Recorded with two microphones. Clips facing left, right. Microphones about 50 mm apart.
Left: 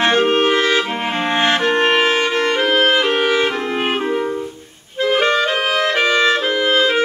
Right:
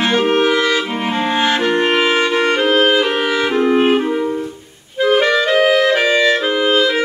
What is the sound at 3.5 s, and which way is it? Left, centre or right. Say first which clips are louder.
Music: right 7 dB; right.